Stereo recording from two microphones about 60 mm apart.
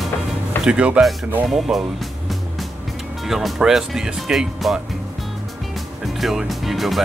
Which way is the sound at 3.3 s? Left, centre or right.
Centre.